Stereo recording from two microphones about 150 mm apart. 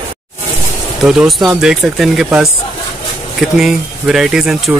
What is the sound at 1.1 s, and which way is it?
Speech, 5° right (ahead or behind).